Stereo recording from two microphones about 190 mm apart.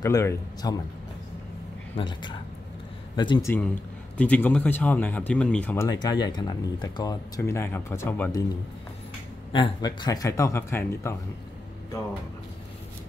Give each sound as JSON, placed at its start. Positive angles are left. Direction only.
{"t": 0.0, "sound": "speech", "side_deg": 15}
{"t": 2.0, "sound": "speech", "side_deg": 25}
{"t": 5.9, "sound": "speech", "side_deg": 20}
{"t": 9.5, "sound": "speech", "side_deg": 25}